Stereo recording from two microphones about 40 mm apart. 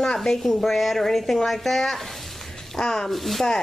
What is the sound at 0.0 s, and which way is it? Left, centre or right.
A woman's voice, centre.